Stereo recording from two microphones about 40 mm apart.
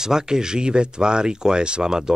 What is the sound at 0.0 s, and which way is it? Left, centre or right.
Speech, centre.